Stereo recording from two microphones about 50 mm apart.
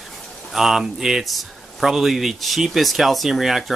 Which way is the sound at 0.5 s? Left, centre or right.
Centre.